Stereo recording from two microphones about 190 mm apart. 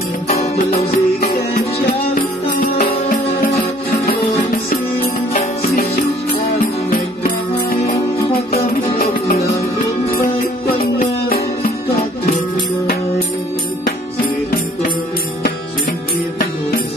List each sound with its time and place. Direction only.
0.3 s music: 35° left (ahead or behind)
2.1 s music: 45° left (ahead or behind)
5.0 s music: 45° left (ahead or behind)
10.8 s music: 50° left (ahead or behind)